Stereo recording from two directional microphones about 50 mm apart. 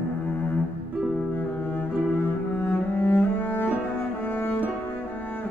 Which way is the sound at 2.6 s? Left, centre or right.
Left.